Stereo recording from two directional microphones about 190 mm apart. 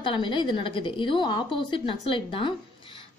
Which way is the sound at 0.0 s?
25° left (ahead or behind).